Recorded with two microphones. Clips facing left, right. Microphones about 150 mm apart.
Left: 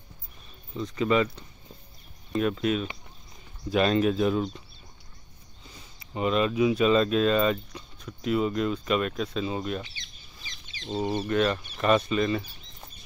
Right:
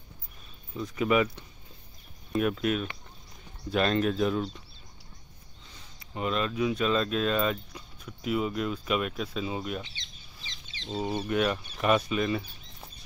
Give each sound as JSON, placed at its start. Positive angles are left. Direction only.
{"t": 0.7, "sound": "speech", "side_deg": -5}
{"t": 5.9, "sound": "speech", "side_deg": 5}
{"t": 9.8, "sound": "squawk", "side_deg": -25}
{"t": 10.9, "sound": "speech", "side_deg": -5}